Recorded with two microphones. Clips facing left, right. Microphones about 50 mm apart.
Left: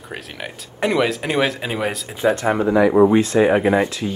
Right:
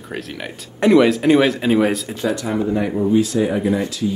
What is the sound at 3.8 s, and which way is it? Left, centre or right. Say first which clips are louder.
Speech: left 1 dB; left.